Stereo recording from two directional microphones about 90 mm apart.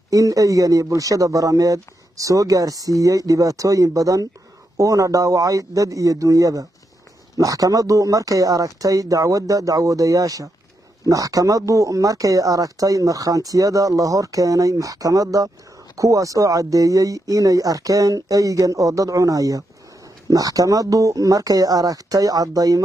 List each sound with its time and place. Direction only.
0.1 s speech: 40° right (ahead or behind)